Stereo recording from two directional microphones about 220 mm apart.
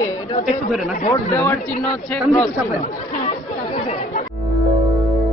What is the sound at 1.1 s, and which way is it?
Speech, 10° left (ahead or behind).